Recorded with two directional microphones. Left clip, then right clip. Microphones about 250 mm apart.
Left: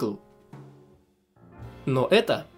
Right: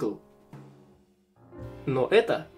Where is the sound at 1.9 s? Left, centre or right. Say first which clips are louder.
Left 1 dB; left.